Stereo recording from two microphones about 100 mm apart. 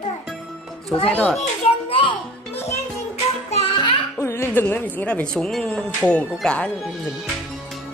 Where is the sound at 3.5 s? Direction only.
75° left (ahead or behind).